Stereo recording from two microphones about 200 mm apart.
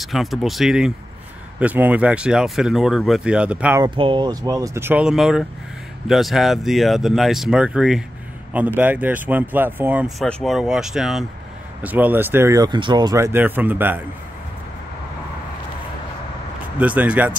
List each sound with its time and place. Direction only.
0.0 s speech: centre (ahead or behind)
3.8 s speech: 25° right (ahead or behind); by 14.0 s 10° right (ahead or behind)
16.7 s speech: 5° right (ahead or behind)